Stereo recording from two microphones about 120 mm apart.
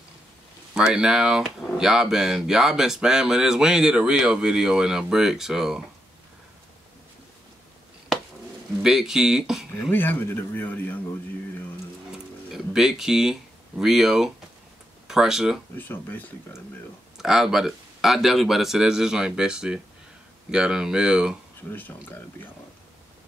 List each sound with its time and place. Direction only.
0.7 s speech: 5° right (ahead or behind)
8.8 s speech: 5° right (ahead or behind)
9.8 s speech: 15° left (ahead or behind)
12.5 s speech: 5° right (ahead or behind)
15.8 s speech: 15° left (ahead or behind)
17.2 s speech: 5° right (ahead or behind)